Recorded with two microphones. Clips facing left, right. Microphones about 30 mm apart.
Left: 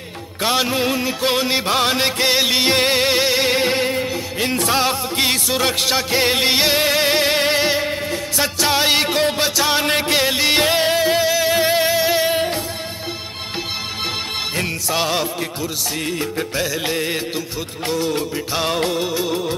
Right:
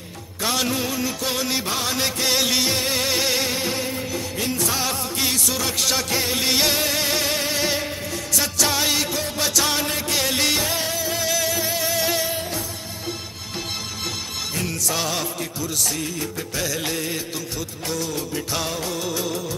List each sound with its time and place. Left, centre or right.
0.4 s music: left
2.7 s music: left
3.4 s music: left
5.9 s music: left
9.4 s music: left
9.8 s music: left
11.2 s music: left
11.5 s music: left
14.9 s music: left
16.5 s music: left
17.8 s music: left
18.9 s music: left